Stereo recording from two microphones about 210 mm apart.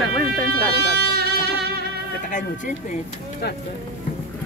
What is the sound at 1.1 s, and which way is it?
Music, 50° right (ahead or behind).